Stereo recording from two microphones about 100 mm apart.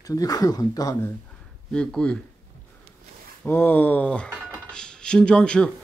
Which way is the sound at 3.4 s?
20° left (ahead or behind).